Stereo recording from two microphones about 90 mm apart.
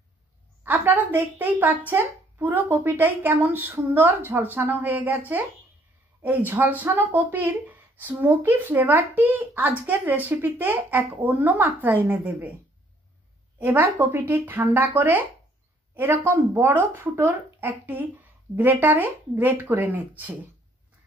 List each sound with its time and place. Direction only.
0.7 s speech: 20° right (ahead or behind)
6.2 s speech: 20° right (ahead or behind)
13.6 s speech: 20° right (ahead or behind)